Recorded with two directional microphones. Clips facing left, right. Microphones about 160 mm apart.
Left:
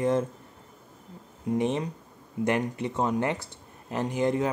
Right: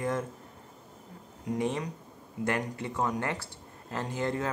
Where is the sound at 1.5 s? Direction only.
25° left (ahead or behind).